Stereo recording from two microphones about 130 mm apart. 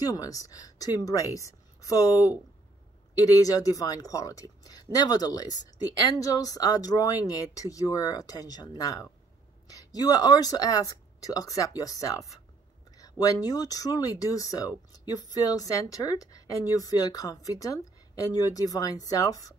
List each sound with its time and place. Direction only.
0.0 s speech: 30° left (ahead or behind)